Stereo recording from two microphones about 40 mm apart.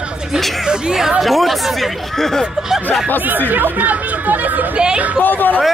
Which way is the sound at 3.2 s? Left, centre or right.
Right.